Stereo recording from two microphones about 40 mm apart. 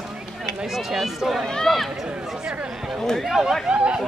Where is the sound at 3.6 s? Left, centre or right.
Right.